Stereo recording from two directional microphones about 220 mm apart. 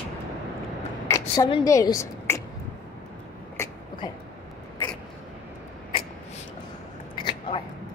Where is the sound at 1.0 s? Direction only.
15° left (ahead or behind).